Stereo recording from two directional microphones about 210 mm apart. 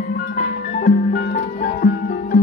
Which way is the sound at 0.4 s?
35° left (ahead or behind).